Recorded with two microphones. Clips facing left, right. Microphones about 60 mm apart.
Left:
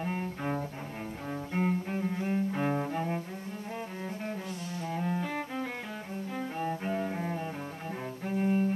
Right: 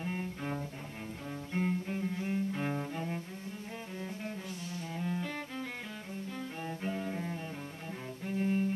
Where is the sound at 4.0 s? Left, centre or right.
Left.